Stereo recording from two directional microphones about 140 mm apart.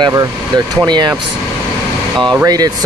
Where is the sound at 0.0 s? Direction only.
25° right (ahead or behind).